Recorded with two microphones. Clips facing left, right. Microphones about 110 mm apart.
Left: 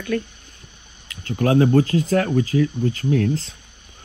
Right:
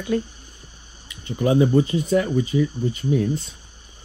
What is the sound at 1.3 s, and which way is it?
Speech, 70° left (ahead or behind).